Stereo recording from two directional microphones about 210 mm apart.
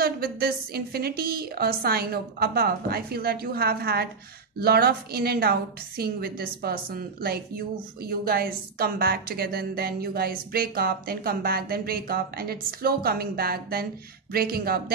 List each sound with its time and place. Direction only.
0.0 s a woman's voice: 45° right (ahead or behind)